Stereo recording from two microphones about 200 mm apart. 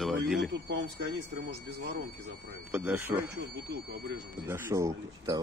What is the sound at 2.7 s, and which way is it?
Speech, 10° right (ahead or behind).